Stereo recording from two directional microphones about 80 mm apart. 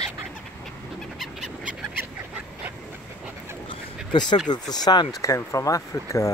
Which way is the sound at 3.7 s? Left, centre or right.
Left.